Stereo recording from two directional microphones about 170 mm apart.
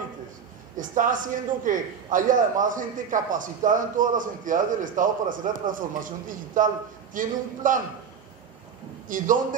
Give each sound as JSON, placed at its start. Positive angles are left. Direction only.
{"t": 0.7, "sound": "a man's voice", "side_deg": -50}
{"t": 9.1, "sound": "a man's voice", "side_deg": -50}